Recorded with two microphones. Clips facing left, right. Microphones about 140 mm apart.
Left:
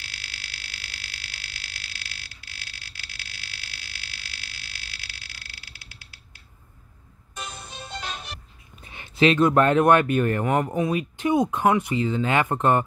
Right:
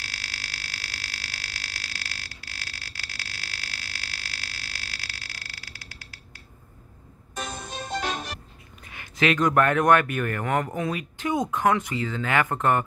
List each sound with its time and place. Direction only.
0.0 s a sound: 40° right (ahead or behind)
7.3 s music: 45° right (ahead or behind)
8.8 s speech: 20° left (ahead or behind)